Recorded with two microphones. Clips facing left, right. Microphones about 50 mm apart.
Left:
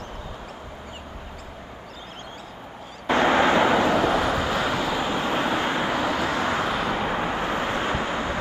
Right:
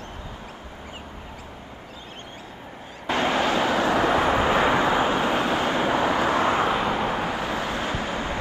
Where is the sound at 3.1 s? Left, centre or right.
Left.